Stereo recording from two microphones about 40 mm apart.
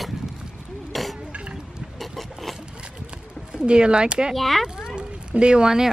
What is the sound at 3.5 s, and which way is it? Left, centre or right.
Speech, right.